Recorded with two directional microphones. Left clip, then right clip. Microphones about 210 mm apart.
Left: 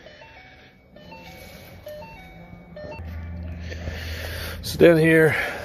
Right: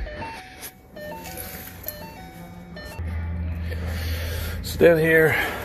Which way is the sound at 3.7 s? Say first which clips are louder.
Even; 35° left (ahead or behind).